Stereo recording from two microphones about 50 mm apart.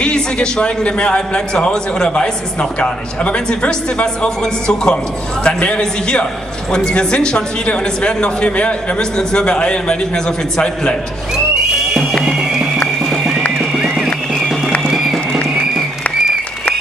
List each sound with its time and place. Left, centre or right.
0.0 s a man's voice: centre
11.9 s music: centre